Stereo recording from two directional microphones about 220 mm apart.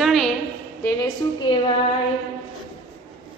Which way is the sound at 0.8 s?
15° left (ahead or behind).